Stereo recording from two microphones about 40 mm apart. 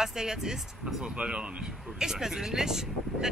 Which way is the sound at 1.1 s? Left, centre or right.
Right.